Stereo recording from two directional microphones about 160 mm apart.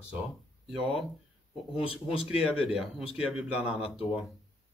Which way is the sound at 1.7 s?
35° left (ahead or behind).